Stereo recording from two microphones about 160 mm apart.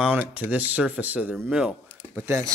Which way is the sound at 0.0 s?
10° right (ahead or behind).